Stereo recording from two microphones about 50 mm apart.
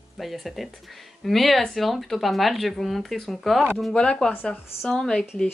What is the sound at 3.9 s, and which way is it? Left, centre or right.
Speech, centre.